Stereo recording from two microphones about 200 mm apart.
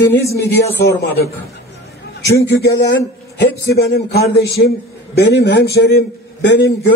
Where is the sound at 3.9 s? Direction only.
55° left (ahead or behind).